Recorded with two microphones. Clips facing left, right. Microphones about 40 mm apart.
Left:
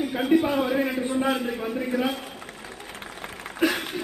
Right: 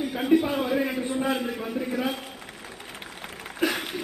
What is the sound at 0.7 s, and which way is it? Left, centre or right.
A man's voice, centre.